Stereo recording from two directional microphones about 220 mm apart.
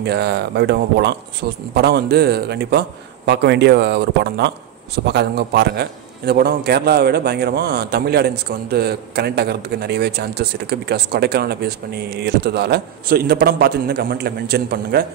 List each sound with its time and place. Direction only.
0.0 s a man's voice: 50° right (ahead or behind)